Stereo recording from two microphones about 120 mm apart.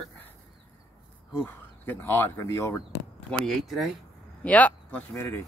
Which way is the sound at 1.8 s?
20° left (ahead or behind).